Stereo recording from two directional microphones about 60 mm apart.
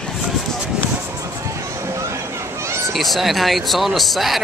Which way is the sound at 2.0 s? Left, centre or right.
Right.